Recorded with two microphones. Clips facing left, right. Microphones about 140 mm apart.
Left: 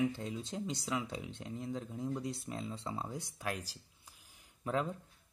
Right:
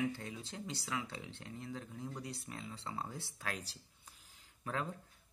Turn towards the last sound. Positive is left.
turn(degrees=20)  # may be behind; listen again after turning